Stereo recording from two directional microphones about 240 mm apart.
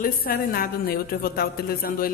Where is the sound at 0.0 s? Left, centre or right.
Left.